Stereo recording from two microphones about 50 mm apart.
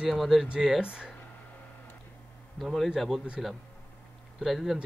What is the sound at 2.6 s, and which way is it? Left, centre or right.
Speech, centre.